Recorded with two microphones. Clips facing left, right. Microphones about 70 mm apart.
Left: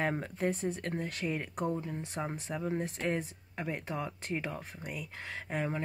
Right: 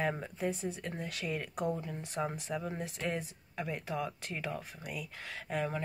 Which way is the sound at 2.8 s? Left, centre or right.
Left.